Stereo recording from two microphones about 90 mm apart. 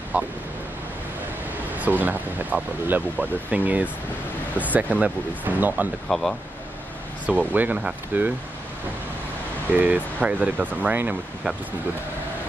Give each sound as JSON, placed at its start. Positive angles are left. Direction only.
{"t": 0.1, "sound": "speech", "side_deg": -15}
{"t": 1.8, "sound": "speech", "side_deg": -20}
{"t": 6.0, "sound": "speech", "side_deg": 5}
{"t": 7.2, "sound": "speech", "side_deg": -15}
{"t": 9.8, "sound": "speech", "side_deg": -20}